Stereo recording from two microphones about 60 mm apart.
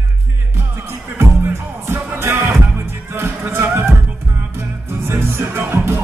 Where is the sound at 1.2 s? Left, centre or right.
Right.